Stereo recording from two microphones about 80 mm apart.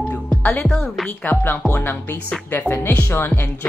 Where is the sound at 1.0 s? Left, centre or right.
Left.